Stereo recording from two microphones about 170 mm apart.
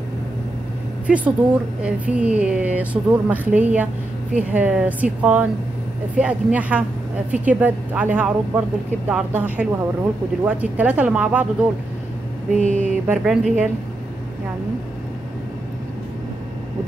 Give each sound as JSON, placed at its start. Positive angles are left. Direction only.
{"t": 1.0, "sound": "a woman's voice", "side_deg": -5}
{"t": 12.5, "sound": "a sound", "side_deg": -45}
{"t": 13.0, "sound": "speech", "side_deg": -5}